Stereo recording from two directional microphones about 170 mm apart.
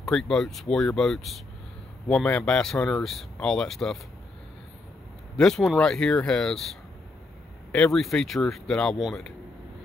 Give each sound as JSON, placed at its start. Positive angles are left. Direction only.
{"t": 0.0, "sound": "speech", "side_deg": 0}
{"t": 5.4, "sound": "speech", "side_deg": 0}